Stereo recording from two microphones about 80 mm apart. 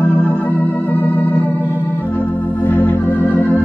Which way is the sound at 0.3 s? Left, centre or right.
Centre.